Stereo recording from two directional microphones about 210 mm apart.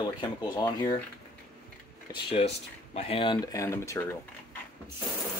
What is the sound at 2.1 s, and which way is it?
Speech, 25° left (ahead or behind).